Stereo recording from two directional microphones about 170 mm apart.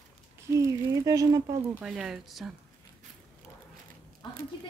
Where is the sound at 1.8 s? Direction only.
5° right (ahead or behind).